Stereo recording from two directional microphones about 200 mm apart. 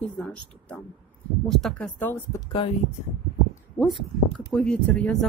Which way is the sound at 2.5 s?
30° left (ahead or behind).